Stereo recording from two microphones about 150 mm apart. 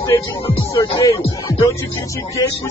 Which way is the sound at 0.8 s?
25° left (ahead or behind).